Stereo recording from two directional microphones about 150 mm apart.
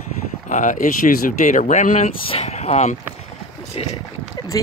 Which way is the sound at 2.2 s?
45° left (ahead or behind).